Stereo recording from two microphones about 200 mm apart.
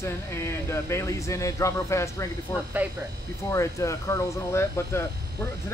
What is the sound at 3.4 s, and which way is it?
Speech, 15° left (ahead or behind).